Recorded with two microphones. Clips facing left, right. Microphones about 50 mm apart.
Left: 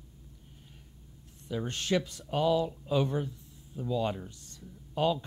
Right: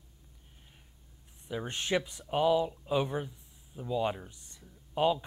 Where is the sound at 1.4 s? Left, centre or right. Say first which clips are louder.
Left 2 dB; centre.